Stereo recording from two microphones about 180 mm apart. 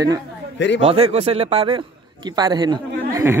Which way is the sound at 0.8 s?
35° right (ahead or behind).